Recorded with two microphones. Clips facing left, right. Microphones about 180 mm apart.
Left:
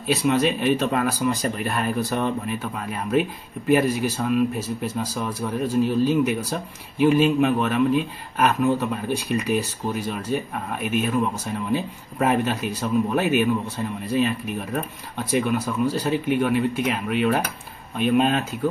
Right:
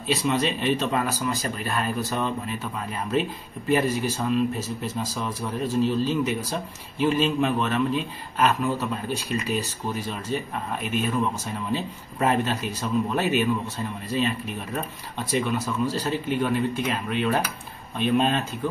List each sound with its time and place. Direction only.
0.1 s speech: 10° left (ahead or behind)
15.3 s speech: 10° left (ahead or behind)